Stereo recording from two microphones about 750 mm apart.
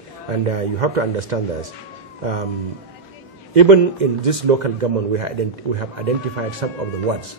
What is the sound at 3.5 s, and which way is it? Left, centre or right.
A man's voice, right.